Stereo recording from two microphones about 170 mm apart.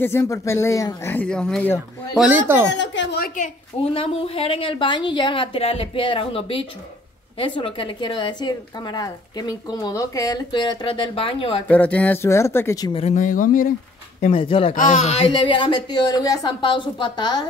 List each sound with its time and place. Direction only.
0.0 s speech: 15° left (ahead or behind)
2.1 s speech: 10° right (ahead or behind)
2.7 s speech: 90° left
3.3 s speech: 45° left (ahead or behind)
3.9 s a woman's voice: 35° left (ahead or behind)
11.6 s speech: 10° left (ahead or behind)
13.0 s speech: 50° left (ahead or behind)
14.2 s a woman's voice: 30° left (ahead or behind)
14.7 s a woman's voice: 50° left (ahead or behind); by 17.4 s 25° left (ahead or behind)